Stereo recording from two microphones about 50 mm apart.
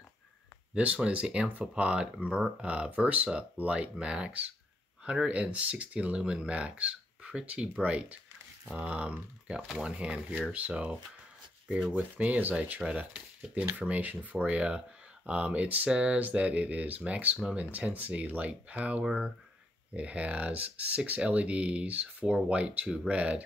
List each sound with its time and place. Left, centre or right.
0.7 s speech: right